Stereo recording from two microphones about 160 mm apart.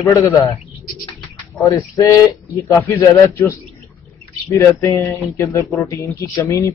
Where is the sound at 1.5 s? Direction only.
20° left (ahead or behind).